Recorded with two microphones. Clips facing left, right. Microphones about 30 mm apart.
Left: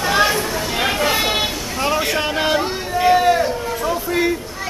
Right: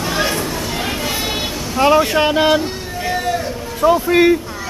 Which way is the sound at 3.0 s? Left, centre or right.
Left.